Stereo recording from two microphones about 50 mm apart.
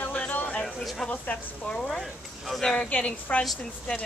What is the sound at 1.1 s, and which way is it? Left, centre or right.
Speech, left.